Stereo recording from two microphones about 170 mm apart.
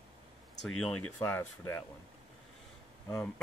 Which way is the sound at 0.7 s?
5° left (ahead or behind).